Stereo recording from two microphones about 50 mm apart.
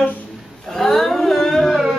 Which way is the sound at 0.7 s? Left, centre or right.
Centre.